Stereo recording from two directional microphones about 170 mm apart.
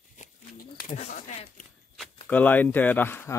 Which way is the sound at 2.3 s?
10° left (ahead or behind).